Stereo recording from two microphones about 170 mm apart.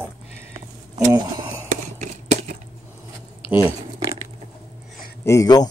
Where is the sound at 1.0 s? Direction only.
15° right (ahead or behind).